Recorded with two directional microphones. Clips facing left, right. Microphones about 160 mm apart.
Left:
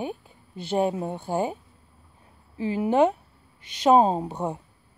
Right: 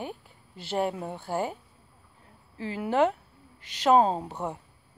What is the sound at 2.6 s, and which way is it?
A woman's voice, 20° left (ahead or behind).